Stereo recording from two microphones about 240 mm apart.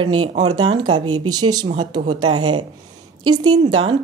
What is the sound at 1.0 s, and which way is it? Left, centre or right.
Speech, right.